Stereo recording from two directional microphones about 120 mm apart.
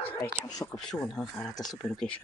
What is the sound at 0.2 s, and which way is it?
Speech, 30° left (ahead or behind).